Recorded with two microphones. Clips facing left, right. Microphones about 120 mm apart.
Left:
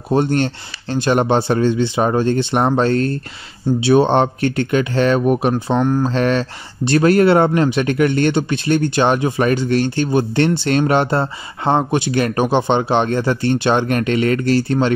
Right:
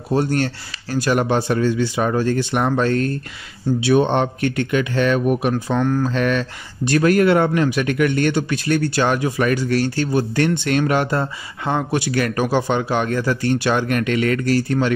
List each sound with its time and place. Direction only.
0.1 s speech: 25° left (ahead or behind)